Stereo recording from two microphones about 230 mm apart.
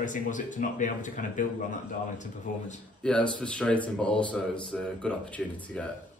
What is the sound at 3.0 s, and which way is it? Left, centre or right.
Speech, centre.